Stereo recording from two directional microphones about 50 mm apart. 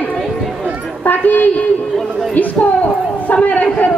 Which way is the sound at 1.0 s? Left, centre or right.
Left.